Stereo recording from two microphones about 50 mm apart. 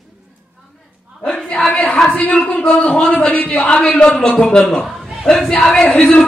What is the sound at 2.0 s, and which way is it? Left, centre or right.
Speech, left.